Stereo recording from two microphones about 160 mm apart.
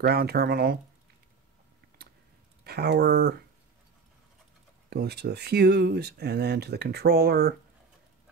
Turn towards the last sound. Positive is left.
turn(degrees=-85)